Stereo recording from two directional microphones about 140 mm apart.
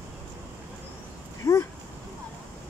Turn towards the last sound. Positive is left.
turn(degrees=20)  # may be behind; listen again after turning